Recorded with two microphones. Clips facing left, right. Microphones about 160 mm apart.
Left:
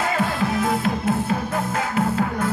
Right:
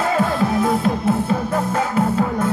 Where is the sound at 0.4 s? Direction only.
30° right (ahead or behind).